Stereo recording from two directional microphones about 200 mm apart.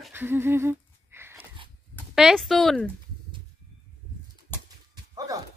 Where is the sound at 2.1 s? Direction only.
Centre (ahead or behind).